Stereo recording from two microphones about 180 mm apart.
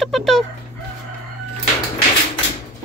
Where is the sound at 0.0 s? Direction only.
Centre (ahead or behind).